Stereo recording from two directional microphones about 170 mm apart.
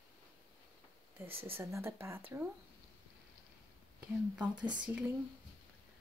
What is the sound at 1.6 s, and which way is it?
Speech, 15° right (ahead or behind).